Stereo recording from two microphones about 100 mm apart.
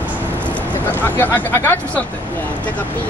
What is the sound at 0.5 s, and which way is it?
Speech, 20° left (ahead or behind).